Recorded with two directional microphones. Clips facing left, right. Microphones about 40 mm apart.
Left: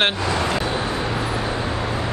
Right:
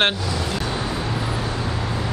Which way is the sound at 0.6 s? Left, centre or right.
Centre.